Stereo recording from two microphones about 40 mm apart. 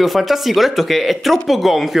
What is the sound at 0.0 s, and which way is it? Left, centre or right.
Speech, centre.